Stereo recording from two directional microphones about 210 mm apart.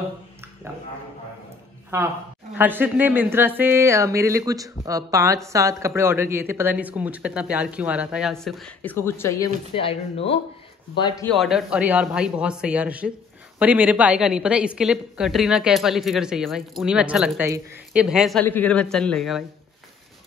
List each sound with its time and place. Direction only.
2.5 s speech: 10° right (ahead or behind); by 9.5 s 10° left (ahead or behind)
9.8 s speech: 25° left (ahead or behind)
11.3 s speech: centre (ahead or behind)